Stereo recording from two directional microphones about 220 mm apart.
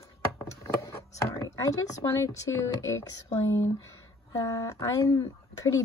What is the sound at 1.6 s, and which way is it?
Speech, 15° left (ahead or behind).